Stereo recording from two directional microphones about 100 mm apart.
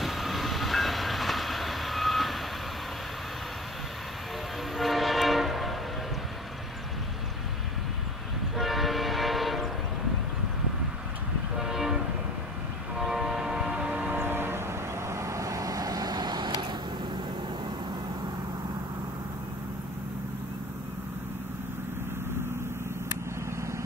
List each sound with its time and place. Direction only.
0.0 s train: centre (ahead or behind)
4.7 s train: centre (ahead or behind)
8.5 s train: centre (ahead or behind)
11.5 s train: 5° right (ahead or behind); by 14.6 s 20° right (ahead or behind)
15.0 s vehicle: 30° right (ahead or behind); by 16.6 s 45° right (ahead or behind)